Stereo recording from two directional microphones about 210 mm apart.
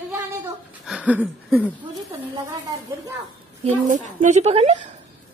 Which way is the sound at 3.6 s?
35° right (ahead or behind).